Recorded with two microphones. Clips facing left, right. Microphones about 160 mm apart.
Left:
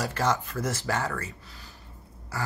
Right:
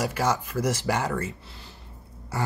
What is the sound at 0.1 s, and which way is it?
Speech, 10° right (ahead or behind).